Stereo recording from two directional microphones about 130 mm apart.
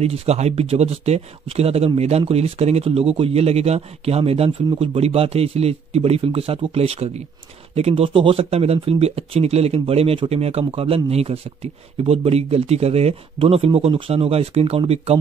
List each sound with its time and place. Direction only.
0.0 s speech: 50° right (ahead or behind)